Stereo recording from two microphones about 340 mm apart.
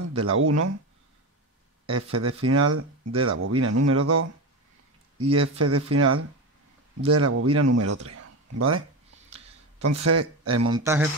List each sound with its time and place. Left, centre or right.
0.1 s speech: right
1.9 s speech: right
8.1 s a sound: right
9.8 s speech: right
10.7 s speech: centre